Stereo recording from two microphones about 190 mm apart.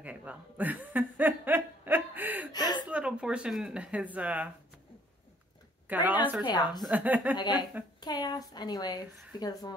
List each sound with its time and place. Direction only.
0.0 s chuckle: 10° right (ahead or behind)
2.5 s gasp: 20° left (ahead or behind)
2.9 s speech: 5° right (ahead or behind)
5.9 s speech: 10° right (ahead or behind)
6.4 s a woman's voice: 20° left (ahead or behind)
6.8 s a woman's voice: 5° right (ahead or behind)
7.3 s a woman's voice: 20° left (ahead or behind)